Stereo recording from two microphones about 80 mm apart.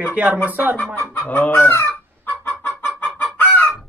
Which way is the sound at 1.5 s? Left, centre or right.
Left.